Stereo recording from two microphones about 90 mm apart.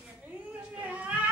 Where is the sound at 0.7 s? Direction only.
15° right (ahead or behind).